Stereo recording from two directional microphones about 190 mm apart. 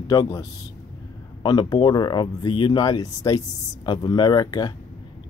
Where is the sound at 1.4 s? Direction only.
25° left (ahead or behind).